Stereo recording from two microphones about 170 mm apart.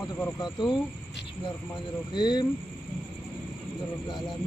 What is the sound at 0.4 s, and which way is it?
Speech, 25° left (ahead or behind).